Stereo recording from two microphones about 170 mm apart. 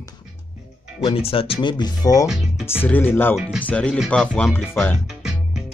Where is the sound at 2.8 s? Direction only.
10° left (ahead or behind).